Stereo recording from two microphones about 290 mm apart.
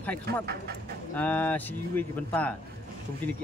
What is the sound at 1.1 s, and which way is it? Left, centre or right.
Speech, centre.